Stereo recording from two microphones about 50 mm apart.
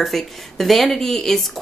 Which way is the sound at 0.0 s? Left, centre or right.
Centre.